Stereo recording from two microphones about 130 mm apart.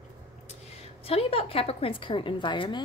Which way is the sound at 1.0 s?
50° left (ahead or behind).